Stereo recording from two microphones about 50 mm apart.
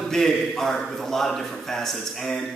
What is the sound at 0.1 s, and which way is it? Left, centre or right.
A man's voice, centre.